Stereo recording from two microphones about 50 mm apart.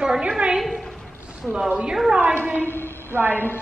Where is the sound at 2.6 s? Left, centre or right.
Left.